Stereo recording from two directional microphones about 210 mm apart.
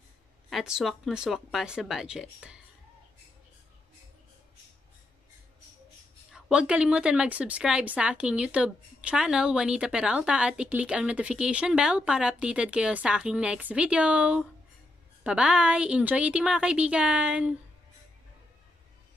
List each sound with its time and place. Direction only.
0.5 s a woman's voice: centre (ahead or behind)
6.3 s a woman's voice: 5° right (ahead or behind)